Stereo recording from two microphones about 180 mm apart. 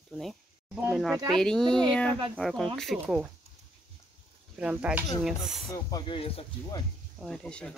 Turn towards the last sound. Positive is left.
turn(degrees=5)  # may be behind; listen again after turning